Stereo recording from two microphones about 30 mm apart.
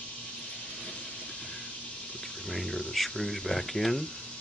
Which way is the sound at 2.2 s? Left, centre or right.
Centre.